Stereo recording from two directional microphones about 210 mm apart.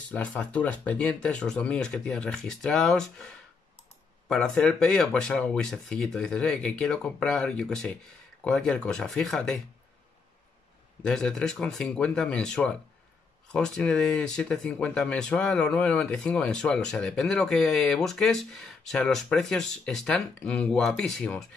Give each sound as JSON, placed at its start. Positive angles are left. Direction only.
{"t": 0.1, "sound": "speech", "side_deg": 5}
{"t": 11.1, "sound": "speech", "side_deg": 5}